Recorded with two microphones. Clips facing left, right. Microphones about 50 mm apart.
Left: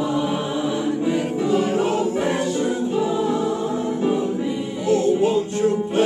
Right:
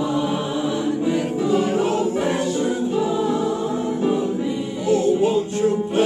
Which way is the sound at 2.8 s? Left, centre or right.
Centre.